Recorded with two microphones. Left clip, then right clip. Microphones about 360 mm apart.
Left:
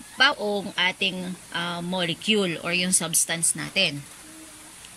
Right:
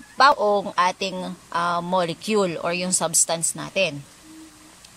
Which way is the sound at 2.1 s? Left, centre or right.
Centre.